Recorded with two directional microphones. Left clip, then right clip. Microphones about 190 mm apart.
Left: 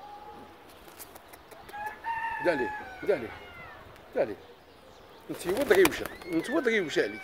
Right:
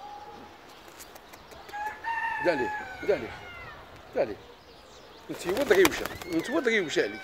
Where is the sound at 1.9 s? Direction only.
35° right (ahead or behind).